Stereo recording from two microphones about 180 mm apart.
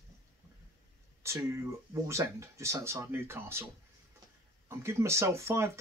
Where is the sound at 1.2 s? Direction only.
15° right (ahead or behind).